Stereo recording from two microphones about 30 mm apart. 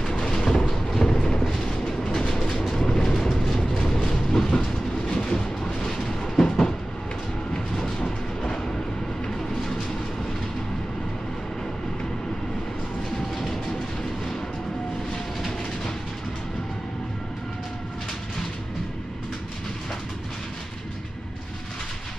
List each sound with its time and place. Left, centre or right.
0.1 s thunder: left
1.5 s train: left
3.3 s vehicle: centre
3.8 s train: centre
5.6 s vehicle: centre